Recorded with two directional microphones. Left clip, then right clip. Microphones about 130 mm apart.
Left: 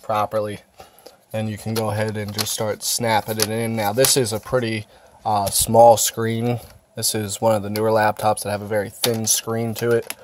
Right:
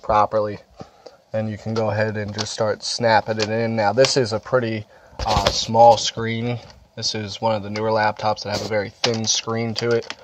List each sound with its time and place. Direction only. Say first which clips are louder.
0.0 s speech: right 4 dB; centre (ahead or behind)
1.0 s speech: right 2 dB; 30° left (ahead or behind)
5.7 s speech: left 1 dB; 65° left (ahead or behind)
6.1 s speech: left 2 dB; 50° left (ahead or behind)
8.6 s speech: even; 20° left (ahead or behind)